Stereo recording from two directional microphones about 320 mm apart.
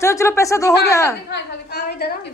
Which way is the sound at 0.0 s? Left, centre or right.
Centre.